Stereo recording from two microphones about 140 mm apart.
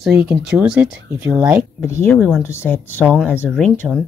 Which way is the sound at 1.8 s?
20° left (ahead or behind).